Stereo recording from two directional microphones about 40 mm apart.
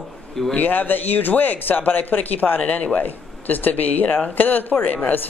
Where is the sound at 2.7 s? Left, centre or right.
Left.